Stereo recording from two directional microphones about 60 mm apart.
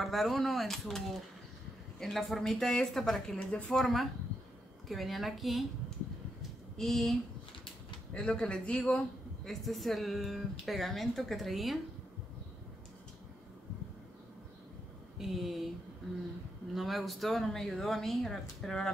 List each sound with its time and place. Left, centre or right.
0.0 s speech: centre
3.3 s speech: left
3.7 s speech: centre
6.8 s a man's voice: centre
15.1 s speech: centre
16.7 s speech: centre